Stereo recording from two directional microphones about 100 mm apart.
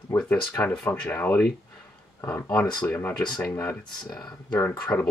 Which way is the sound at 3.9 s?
40° left (ahead or behind).